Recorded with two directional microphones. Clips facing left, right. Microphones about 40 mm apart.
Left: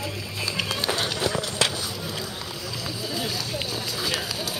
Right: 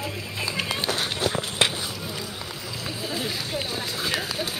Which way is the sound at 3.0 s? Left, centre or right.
Right.